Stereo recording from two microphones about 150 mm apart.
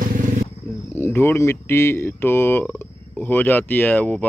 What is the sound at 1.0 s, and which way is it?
Speech, 15° left (ahead or behind).